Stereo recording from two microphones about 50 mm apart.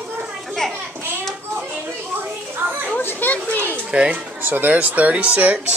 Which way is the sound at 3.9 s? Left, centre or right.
Right.